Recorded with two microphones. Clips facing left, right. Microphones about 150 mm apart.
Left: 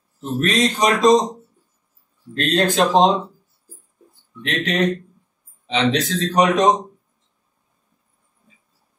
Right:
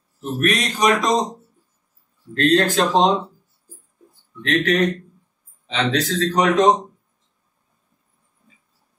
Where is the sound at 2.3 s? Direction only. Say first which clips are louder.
Right 2 dB; 20° left (ahead or behind).